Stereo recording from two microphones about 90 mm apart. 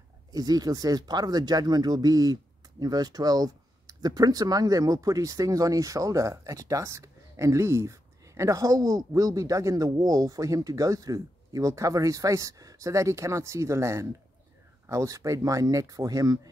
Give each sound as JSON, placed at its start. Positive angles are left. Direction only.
{"t": 0.3, "sound": "speech", "side_deg": -45}